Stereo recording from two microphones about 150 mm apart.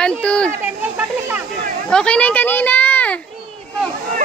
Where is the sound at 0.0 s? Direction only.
5° left (ahead or behind).